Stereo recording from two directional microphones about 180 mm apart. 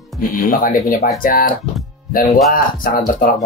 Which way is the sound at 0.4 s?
50° left (ahead or behind).